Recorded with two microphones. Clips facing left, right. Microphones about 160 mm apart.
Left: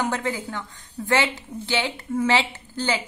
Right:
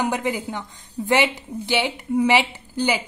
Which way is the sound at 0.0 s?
15° right (ahead or behind).